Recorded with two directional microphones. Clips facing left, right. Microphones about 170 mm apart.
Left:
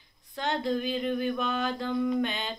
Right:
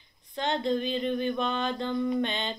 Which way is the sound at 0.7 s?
5° left (ahead or behind).